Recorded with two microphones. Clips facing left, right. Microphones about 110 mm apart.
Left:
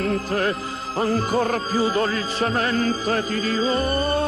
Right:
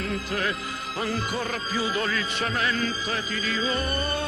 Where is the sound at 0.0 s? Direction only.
40° left (ahead or behind).